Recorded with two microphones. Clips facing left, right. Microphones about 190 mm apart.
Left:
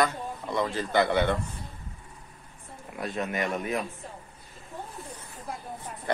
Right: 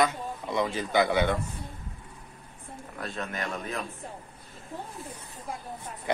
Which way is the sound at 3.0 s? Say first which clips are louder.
Left 5 dB; 15° left (ahead or behind).